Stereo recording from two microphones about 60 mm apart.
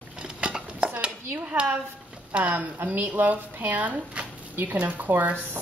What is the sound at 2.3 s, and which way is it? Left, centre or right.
Speech, right.